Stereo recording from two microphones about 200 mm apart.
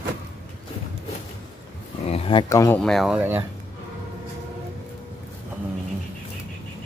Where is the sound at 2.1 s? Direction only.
25° left (ahead or behind); by 3.5 s 10° right (ahead or behind).